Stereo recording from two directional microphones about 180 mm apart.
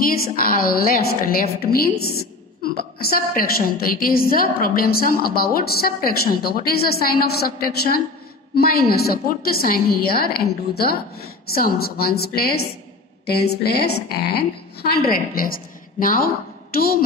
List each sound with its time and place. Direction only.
0.0 s a woman's voice: 55° left (ahead or behind)
3.0 s a woman's voice: 55° left (ahead or behind)